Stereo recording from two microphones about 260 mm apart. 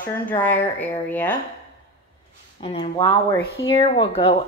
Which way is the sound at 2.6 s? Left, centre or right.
Centre.